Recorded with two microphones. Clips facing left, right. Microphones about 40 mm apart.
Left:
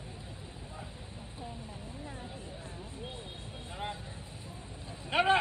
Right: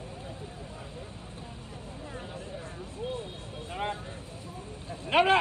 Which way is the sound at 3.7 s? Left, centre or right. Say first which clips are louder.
Right 6 dB; right.